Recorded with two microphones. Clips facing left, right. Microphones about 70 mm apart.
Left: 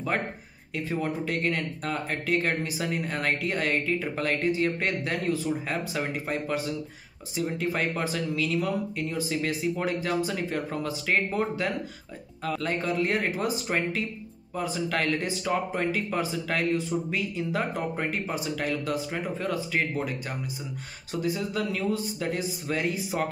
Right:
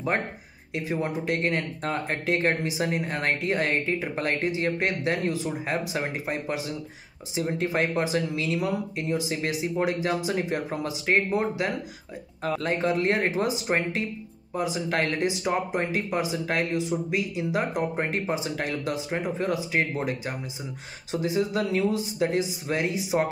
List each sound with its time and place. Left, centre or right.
1.0 s speech: right
12.4 s speech: right